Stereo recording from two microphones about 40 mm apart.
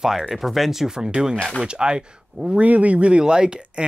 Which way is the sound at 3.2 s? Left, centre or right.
Right.